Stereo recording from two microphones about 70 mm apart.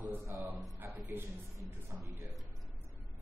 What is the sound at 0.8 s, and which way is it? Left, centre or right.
A man's voice, right.